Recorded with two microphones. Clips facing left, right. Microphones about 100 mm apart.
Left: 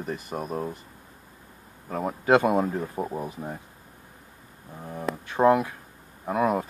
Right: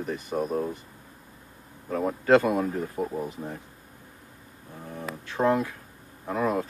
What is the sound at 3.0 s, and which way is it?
Speech, 30° left (ahead or behind).